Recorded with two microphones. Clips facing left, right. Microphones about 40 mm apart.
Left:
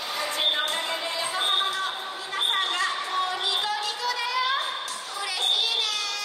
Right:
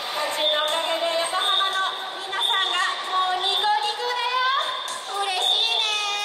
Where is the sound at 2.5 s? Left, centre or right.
Right.